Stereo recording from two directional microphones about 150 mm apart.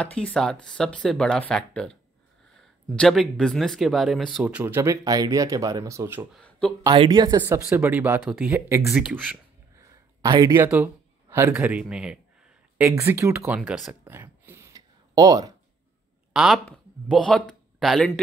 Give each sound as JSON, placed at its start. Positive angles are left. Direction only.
{"t": 0.0, "sound": "speech", "side_deg": 10}
{"t": 3.0, "sound": "speech", "side_deg": 0}
{"t": 6.3, "sound": "a sound", "side_deg": 5}
{"t": 6.9, "sound": "speech", "side_deg": -35}
{"t": 9.8, "sound": "a sound", "side_deg": -25}
{"t": 11.5, "sound": "speech", "side_deg": -10}
{"t": 12.8, "sound": "speech", "side_deg": -15}
{"t": 14.0, "sound": "a sound", "side_deg": -15}
{"t": 16.3, "sound": "speech", "side_deg": 0}